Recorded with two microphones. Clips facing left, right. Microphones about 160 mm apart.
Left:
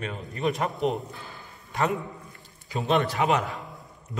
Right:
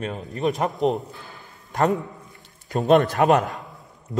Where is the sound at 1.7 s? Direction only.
40° right (ahead or behind).